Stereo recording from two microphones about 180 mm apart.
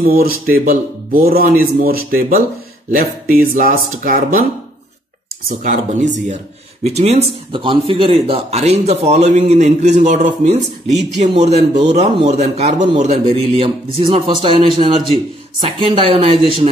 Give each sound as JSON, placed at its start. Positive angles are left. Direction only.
{"t": 0.0, "sound": "a man's voice", "side_deg": -55}
{"t": 5.5, "sound": "a man's voice", "side_deg": -50}
{"t": 6.8, "sound": "speech", "side_deg": -35}